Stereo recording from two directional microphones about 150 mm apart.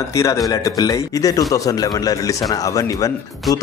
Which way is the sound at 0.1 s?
20° left (ahead or behind).